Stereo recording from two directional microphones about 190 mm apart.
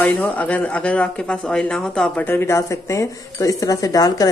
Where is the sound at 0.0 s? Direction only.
10° left (ahead or behind).